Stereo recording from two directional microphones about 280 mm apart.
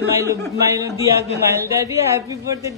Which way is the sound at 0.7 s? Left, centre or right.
Centre.